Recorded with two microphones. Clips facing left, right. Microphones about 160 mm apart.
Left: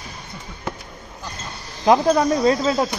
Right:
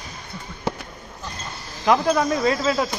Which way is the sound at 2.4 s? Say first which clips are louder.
Left 3 dB; 25° left (ahead or behind).